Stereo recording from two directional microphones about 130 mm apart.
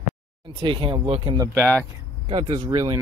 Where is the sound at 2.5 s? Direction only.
35° right (ahead or behind).